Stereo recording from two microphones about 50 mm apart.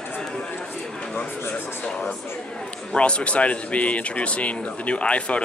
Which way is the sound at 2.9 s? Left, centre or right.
Left.